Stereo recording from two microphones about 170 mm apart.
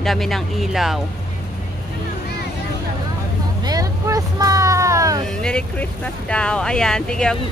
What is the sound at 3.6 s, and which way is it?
Vehicle, 20° right (ahead or behind).